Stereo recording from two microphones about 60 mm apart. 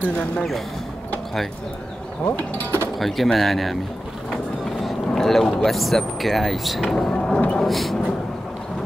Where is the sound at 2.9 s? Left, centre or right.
Centre.